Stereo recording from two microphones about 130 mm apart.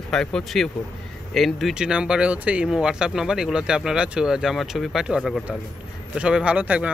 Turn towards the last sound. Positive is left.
turn(degrees=-10)  # may be behind; listen again after turning